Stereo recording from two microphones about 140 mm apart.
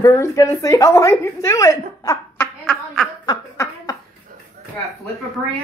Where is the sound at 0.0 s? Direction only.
25° left (ahead or behind).